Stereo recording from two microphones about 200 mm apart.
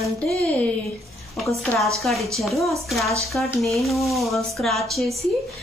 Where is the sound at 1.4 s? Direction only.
5° left (ahead or behind).